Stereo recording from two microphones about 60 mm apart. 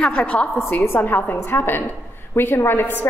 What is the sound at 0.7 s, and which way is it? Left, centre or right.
A woman's voice, left.